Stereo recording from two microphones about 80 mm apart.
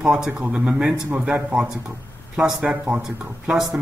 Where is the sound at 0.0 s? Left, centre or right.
Centre.